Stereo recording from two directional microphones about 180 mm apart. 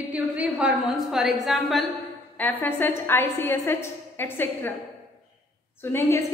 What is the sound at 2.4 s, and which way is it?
A woman's voice, 10° left (ahead or behind).